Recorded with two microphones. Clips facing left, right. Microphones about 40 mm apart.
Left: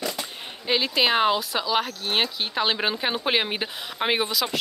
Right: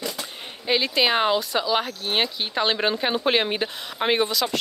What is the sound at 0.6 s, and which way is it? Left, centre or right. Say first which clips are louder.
Speech: right 1 dB; centre.